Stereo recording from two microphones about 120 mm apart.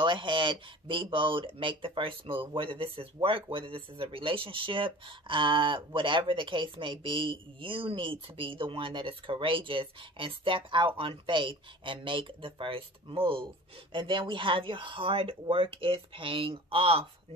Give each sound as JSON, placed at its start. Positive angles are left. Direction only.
{"t": 0.0, "sound": "speech", "side_deg": -40}